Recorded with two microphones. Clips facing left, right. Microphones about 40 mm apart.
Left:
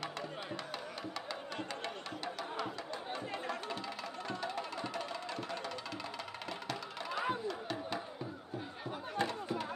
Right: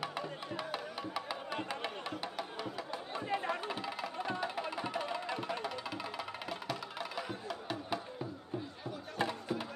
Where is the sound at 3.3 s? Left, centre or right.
Right.